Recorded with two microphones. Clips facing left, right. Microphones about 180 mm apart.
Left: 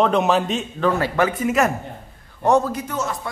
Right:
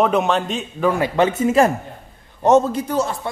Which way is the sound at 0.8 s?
20° right (ahead or behind).